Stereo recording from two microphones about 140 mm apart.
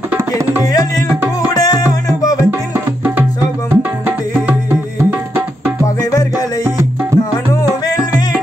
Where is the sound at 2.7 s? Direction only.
15° right (ahead or behind).